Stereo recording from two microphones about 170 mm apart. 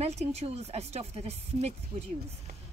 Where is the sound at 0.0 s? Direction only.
40° right (ahead or behind).